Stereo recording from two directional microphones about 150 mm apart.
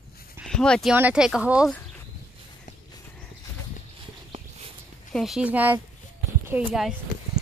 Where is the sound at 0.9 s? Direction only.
10° right (ahead or behind).